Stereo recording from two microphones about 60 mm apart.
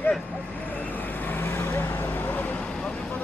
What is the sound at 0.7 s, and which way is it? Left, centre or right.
Vehicle, left.